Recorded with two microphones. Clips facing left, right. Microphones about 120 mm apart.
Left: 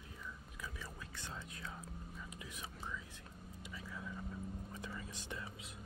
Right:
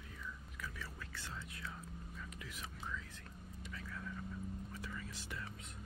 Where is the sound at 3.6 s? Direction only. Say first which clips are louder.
Even; 15° left (ahead or behind).